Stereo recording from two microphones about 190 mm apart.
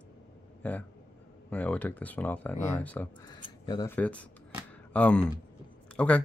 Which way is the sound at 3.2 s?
20° left (ahead or behind).